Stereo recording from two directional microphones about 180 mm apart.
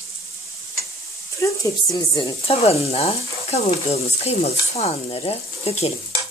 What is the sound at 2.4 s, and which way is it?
Stir, 35° left (ahead or behind).